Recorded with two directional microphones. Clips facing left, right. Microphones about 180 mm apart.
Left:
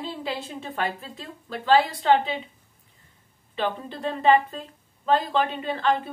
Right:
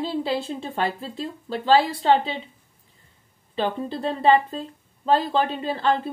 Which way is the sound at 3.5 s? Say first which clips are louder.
Right 3 dB; 35° right (ahead or behind).